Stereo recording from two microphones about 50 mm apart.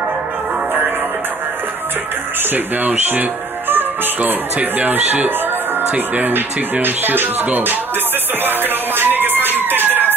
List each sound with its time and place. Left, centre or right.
2.5 s speech: right
4.2 s speech: right
8.5 s music: right
9.6 s a sound: right